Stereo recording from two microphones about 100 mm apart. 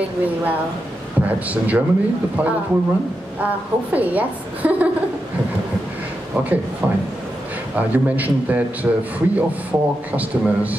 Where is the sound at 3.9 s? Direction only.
15° right (ahead or behind).